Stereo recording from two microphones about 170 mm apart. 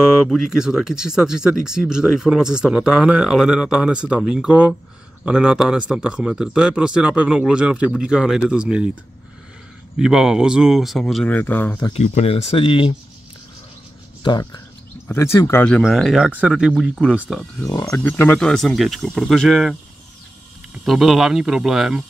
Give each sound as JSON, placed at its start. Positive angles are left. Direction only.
{"t": 0.0, "sound": "speech", "side_deg": 0}
{"t": 9.9, "sound": "speech", "side_deg": -5}
{"t": 11.9, "sound": "speech", "side_deg": 40}
{"t": 14.2, "sound": "speech", "side_deg": 25}
{"t": 17.6, "sound": "speech", "side_deg": 20}